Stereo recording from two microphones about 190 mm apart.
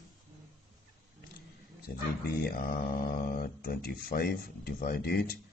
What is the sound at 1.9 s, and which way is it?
Speech, 55° left (ahead or behind).